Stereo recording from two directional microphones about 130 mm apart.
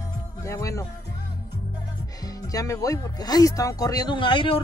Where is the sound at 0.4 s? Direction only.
25° left (ahead or behind).